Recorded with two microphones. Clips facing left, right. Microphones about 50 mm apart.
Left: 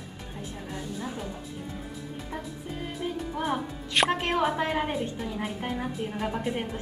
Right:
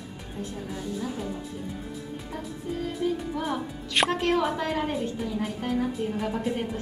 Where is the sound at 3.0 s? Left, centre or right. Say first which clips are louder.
Right 1 dB; centre.